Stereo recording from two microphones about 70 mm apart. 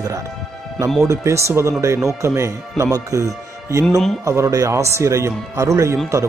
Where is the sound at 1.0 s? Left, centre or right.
Right.